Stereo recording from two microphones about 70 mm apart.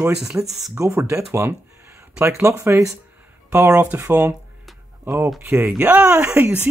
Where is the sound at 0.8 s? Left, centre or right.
Right.